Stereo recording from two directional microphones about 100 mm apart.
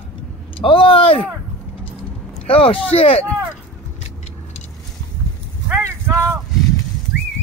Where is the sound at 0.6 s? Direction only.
65° left (ahead or behind).